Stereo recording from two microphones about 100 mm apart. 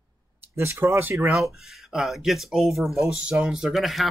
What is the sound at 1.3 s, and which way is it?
Speech, 5° right (ahead or behind).